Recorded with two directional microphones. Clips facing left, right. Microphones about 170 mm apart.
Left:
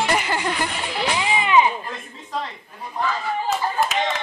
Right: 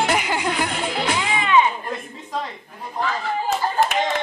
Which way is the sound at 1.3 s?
15° left (ahead or behind).